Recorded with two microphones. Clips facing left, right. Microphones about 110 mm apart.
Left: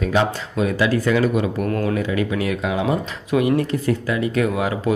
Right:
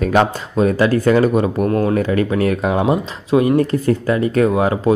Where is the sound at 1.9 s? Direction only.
45° right (ahead or behind).